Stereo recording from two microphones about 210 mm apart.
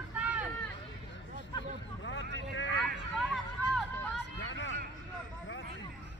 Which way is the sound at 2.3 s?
60° left (ahead or behind).